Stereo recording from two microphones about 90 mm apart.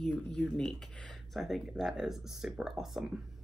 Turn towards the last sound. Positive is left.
turn(degrees=-5)  # may be behind; listen again after turning